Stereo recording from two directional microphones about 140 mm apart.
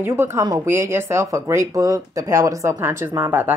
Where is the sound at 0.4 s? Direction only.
30° right (ahead or behind).